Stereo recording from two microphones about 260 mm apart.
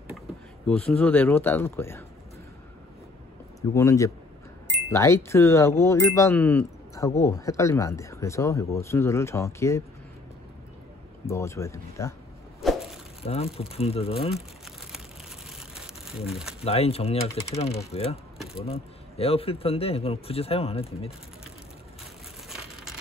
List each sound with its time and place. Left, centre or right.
0.7 s speech: centre
3.7 s speech: centre
11.2 s speech: centre
12.6 s a sound: centre
13.2 s speech: left
15.5 s a sound: centre
16.3 s speech: centre
16.6 s speech: left